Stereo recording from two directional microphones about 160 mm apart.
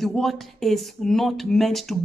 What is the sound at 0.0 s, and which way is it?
A woman's voice, centre (ahead or behind).